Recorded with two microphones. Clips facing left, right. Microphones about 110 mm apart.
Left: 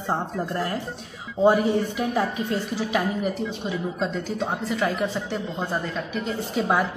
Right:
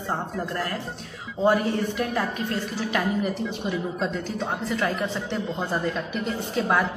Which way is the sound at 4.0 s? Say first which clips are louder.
Left 1 dB; centre (ahead or behind).